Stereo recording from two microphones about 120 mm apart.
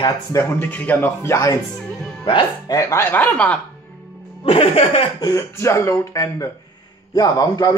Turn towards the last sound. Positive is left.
turn(degrees=30)  # may be behind; listen again after turning